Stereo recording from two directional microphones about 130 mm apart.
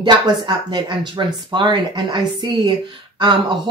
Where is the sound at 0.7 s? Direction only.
35° right (ahead or behind).